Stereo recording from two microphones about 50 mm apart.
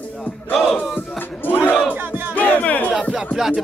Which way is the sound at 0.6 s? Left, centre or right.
Centre.